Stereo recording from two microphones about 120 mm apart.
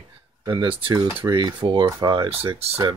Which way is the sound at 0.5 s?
45° right (ahead or behind).